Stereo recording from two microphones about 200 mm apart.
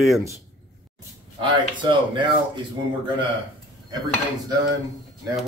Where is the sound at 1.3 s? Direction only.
25° right (ahead or behind).